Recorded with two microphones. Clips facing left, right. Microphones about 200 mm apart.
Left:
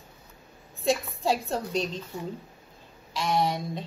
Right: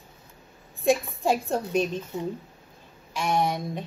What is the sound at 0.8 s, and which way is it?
A woman's voice, 15° right (ahead or behind).